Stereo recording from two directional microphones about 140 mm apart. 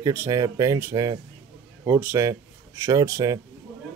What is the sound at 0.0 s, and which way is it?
Speech, 25° right (ahead or behind).